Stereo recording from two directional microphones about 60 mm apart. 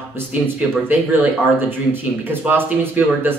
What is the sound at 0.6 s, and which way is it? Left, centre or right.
Speech, right.